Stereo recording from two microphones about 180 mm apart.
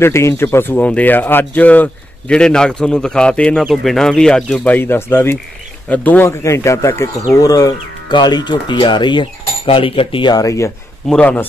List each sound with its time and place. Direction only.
0.0 s speech: 15° left (ahead or behind)
11.1 s speech: 5° left (ahead or behind)